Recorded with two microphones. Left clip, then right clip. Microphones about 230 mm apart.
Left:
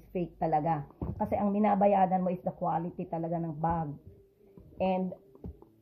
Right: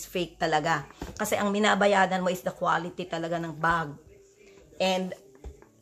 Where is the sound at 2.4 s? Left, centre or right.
Centre.